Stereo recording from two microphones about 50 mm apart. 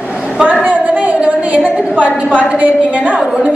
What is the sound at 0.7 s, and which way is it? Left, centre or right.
A woman's voice, right.